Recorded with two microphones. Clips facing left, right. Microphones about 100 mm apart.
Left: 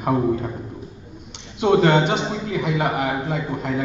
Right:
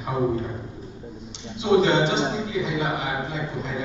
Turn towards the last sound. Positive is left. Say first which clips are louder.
# left 5 dB
turn(degrees=55)  # may be behind; listen again after turning